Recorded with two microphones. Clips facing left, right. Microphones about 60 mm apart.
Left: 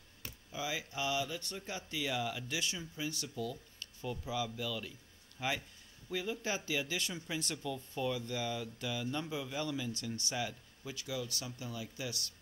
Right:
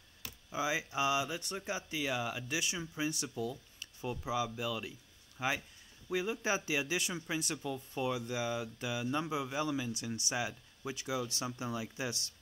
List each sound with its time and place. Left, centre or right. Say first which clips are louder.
0.5 s speech: right 5 dB; right
7.6 s speech: right 1 dB; right